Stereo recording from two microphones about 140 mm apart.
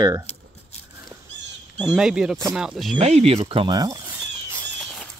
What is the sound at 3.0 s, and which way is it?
Speech, 50° right (ahead or behind).